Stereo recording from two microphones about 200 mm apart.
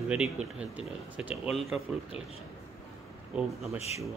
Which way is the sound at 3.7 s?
30° left (ahead or behind).